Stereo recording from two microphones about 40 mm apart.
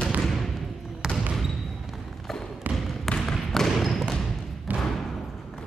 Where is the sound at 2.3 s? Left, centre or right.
Centre.